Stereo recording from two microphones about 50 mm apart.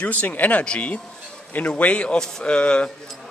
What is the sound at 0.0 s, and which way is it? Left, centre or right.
Speech, left.